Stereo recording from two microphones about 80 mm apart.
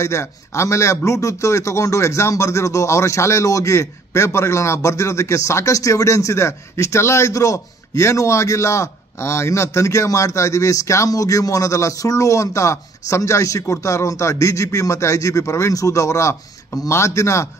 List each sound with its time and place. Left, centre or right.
0.0 s a man's voice: left